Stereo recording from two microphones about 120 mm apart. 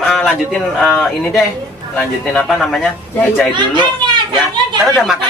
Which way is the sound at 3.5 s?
40° right (ahead or behind).